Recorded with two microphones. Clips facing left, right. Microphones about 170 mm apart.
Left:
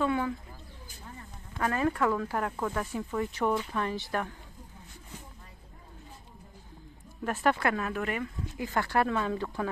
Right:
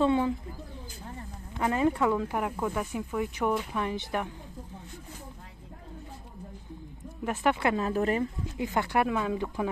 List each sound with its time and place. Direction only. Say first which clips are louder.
0.0 s speech: right 4 dB; 25° right (ahead or behind)
1.6 s speech: right 2 dB; 20° right (ahead or behind)
2.5 s speech: right 1 dB; centre (ahead or behind); by 4.3 s 15° right (ahead or behind)
7.6 s speech: right 2 dB; 25° right (ahead or behind)
7.9 s speech: right 6 dB; 35° right (ahead or behind)
8.5 s speech: right 1 dB; 20° right (ahead or behind)